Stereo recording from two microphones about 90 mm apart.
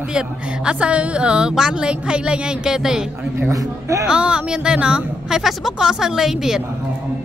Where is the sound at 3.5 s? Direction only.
35° right (ahead or behind).